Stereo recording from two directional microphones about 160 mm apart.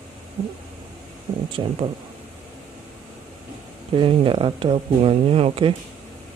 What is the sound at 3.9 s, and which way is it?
Speech, 30° right (ahead or behind).